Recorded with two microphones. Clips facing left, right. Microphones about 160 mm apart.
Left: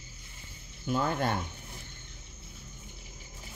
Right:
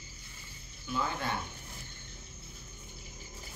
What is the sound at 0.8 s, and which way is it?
Speech, 45° left (ahead or behind).